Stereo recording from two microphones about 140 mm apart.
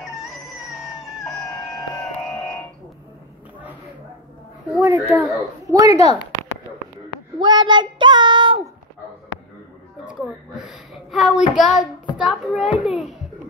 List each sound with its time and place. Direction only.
1.2 s chicken: 5° left (ahead or behind)
2.1 s music: 5° left (ahead or behind)
4.7 s a child's voice: 20° right (ahead or behind)
7.3 s child singing: 35° right (ahead or behind)
10.0 s a sound: 5° right (ahead or behind)
12.2 s speech: 5° right (ahead or behind)